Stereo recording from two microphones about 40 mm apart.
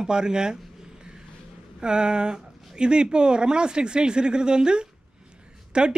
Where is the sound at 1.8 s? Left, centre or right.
Right.